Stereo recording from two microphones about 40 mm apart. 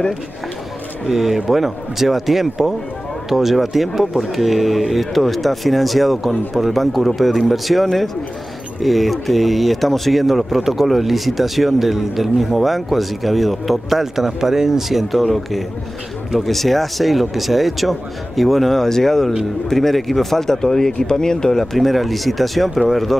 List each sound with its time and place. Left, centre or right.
1.0 s speech: centre
21.7 s speech: centre